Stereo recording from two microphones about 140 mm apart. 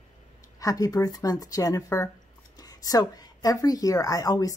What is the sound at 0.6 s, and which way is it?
A woman's voice, 25° left (ahead or behind).